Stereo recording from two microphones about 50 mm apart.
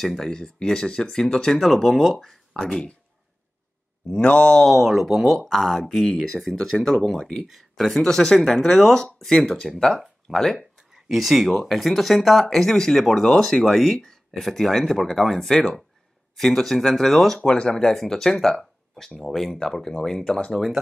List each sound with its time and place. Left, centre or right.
0.0 s speech: centre
0.3 s speech: centre
4.1 s a sound: left
4.6 s speech: centre
10.9 s speech: centre
17.4 s speech: centre